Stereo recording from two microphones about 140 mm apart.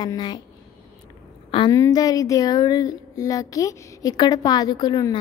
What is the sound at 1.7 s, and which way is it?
A woman's voice, 25° left (ahead or behind).